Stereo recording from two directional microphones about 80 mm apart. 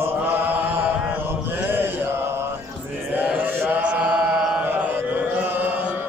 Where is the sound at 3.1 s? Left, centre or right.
Centre.